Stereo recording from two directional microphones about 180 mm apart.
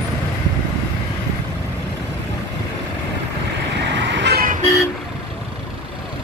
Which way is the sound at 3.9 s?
75° right (ahead or behind).